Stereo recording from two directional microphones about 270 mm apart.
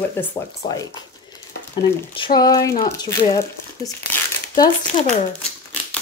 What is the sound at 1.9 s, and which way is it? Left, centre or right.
Speech, centre.